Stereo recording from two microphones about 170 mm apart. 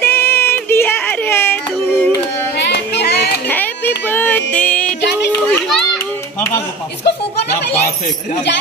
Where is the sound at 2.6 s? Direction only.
80° left.